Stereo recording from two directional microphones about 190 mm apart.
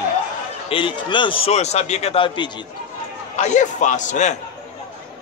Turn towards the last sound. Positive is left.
turn(degrees=40)  # may be behind; listen again after turning